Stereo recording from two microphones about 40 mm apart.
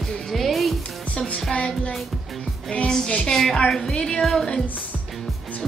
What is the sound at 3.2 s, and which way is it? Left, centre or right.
Speech, centre.